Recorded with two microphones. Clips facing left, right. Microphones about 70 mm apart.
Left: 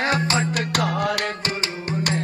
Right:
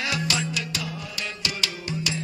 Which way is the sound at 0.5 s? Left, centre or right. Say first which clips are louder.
Left 9 dB; left.